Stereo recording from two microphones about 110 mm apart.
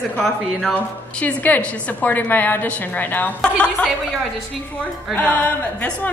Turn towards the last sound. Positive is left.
turn(degrees=15)  # may be behind; listen again after turning